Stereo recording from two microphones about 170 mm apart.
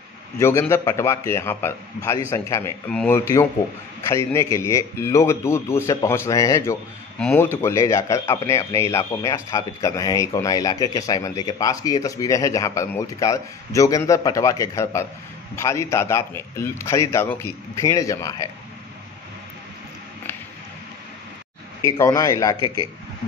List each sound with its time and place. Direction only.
0.4 s a man's voice: 15° left (ahead or behind)
21.8 s speech: 20° left (ahead or behind)